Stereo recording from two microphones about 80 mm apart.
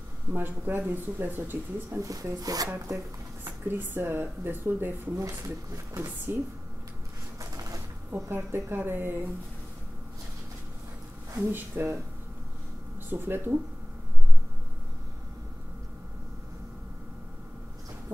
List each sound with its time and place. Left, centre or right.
0.3 s speech: right
2.0 s speech: right
3.4 s speech: right
5.1 s speech: right
5.9 s speech: right
7.3 s a sound: right
8.1 s speech: right
11.4 s speech: right
13.1 s speech: right